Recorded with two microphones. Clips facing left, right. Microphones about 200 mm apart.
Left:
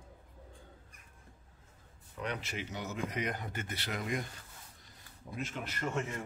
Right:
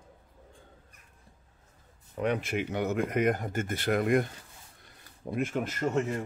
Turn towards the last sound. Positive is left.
turn(degrees=-40)  # may be behind; listen again after turning